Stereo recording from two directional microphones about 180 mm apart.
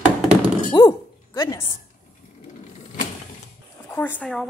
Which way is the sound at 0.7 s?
20° left (ahead or behind).